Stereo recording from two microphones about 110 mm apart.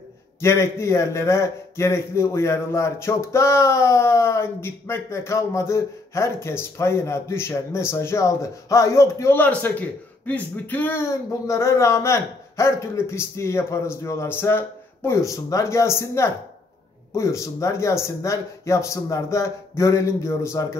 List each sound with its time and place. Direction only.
0.4 s a man's voice: 25° left (ahead or behind)